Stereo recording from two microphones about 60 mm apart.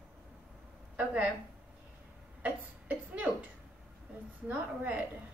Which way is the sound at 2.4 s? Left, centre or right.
Right.